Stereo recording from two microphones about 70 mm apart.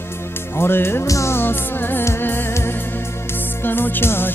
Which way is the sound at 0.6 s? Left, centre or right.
Left.